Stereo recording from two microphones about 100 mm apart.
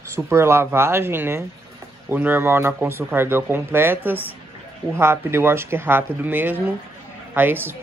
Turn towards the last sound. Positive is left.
turn(degrees=-20)  # may be behind; listen again after turning